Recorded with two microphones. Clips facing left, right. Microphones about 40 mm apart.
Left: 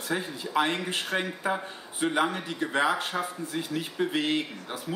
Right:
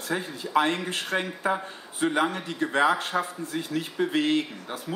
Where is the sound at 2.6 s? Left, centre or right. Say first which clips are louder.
Right 4 dB; centre.